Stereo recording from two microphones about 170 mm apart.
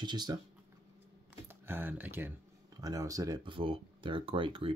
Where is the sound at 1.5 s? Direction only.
10° right (ahead or behind).